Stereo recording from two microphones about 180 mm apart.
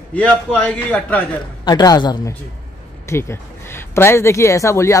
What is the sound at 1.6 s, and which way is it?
A man's voice, 20° left (ahead or behind).